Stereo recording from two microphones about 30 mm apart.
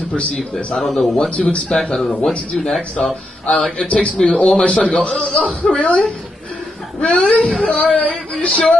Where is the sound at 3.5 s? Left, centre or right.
Centre.